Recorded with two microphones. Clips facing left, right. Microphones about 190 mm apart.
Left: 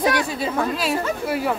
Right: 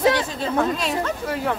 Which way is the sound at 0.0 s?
10° left (ahead or behind).